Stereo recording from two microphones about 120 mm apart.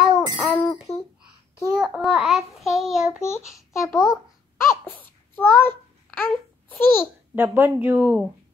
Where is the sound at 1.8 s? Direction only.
5° right (ahead or behind).